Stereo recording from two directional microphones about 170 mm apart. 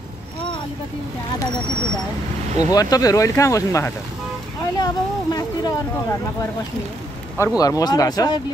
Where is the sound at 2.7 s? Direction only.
20° left (ahead or behind).